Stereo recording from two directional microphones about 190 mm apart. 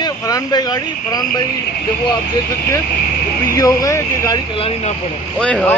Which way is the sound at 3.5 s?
20° left (ahead or behind).